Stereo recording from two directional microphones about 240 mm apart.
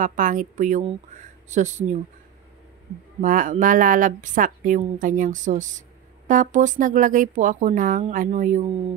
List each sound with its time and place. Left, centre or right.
0.0 s a woman's voice: right
3.2 s a woman's voice: right